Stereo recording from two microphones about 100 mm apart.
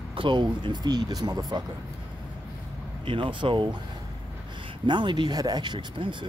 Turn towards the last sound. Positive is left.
turn(degrees=-60)  # may be behind; listen again after turning